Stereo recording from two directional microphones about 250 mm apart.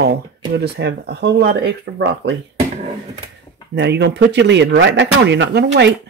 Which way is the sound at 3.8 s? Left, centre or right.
Right.